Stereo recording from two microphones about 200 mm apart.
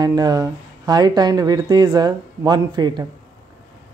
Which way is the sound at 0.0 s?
20° right (ahead or behind).